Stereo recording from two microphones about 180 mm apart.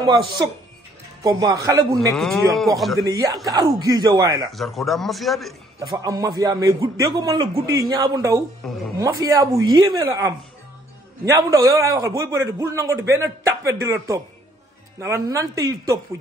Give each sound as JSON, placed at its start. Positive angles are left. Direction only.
{"t": 0.0, "sound": "speech", "side_deg": -25}
{"t": 2.0, "sound": "speech", "side_deg": 0}
{"t": 3.0, "sound": "speech", "side_deg": -20}
{"t": 4.5, "sound": "speech", "side_deg": 0}
{"t": 5.9, "sound": "a man's voice", "side_deg": -20}